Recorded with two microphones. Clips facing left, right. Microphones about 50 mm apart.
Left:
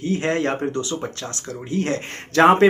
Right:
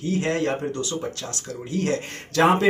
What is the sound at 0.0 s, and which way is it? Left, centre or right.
Speech, left.